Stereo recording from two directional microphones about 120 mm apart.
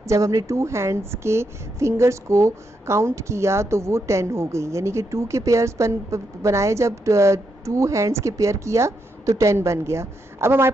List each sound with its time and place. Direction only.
0.0 s a woman's voice: 25° right (ahead or behind)